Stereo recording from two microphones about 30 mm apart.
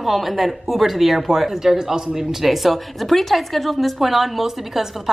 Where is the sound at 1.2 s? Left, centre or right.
Centre.